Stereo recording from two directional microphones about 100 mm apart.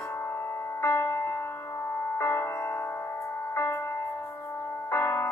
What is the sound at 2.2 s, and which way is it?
Music, 25° left (ahead or behind).